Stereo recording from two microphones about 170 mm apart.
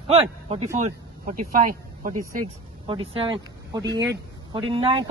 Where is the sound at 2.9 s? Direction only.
30° right (ahead or behind).